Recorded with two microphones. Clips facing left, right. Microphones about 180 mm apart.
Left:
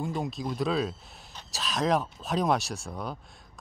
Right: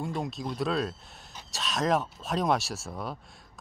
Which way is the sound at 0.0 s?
Centre (ahead or behind).